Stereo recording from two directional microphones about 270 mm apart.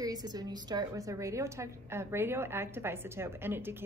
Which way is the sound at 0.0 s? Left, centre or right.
Centre.